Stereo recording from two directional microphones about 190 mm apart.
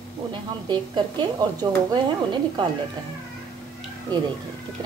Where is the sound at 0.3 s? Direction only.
25° right (ahead or behind).